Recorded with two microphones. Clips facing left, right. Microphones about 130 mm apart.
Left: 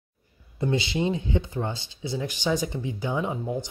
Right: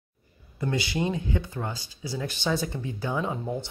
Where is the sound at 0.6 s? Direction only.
20° left (ahead or behind).